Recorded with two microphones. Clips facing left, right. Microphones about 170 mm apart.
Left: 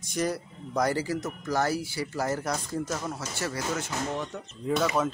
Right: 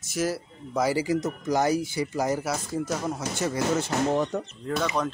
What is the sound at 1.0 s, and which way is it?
Speech, 20° right (ahead or behind).